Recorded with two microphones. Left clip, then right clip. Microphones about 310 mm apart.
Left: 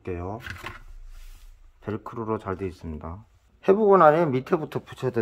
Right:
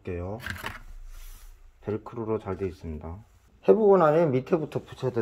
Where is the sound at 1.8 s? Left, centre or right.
Centre.